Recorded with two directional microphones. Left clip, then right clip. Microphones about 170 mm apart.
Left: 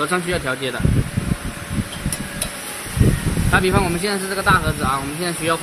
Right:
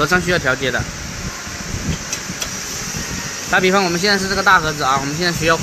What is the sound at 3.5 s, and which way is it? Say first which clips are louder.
Speech: right 3 dB; 15° right (ahead or behind).